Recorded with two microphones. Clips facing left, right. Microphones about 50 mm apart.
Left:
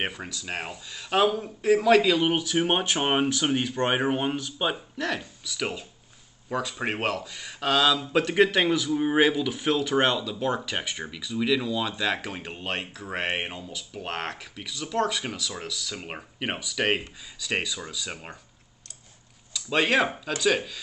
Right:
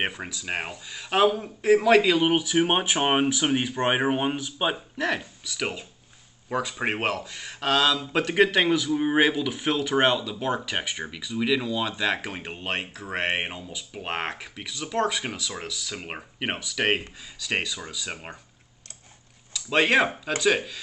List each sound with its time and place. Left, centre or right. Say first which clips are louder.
0.2 s speech: right 2 dB; centre
19.5 s speech: right 2 dB; centre